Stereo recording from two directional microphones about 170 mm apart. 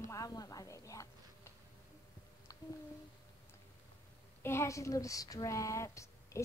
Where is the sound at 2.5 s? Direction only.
20° left (ahead or behind).